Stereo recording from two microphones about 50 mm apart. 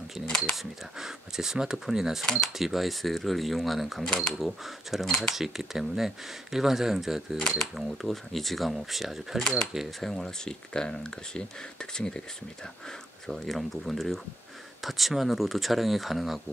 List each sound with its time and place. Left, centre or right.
0.3 s speech: centre
0.9 s speech: centre
4.0 s speech: centre
4.3 s speech: centre
7.3 s speech: centre
7.7 s speech: centre
13.3 s speech: centre